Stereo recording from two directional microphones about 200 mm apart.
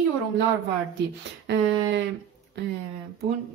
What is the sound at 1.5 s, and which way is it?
Speech, 60° right (ahead or behind).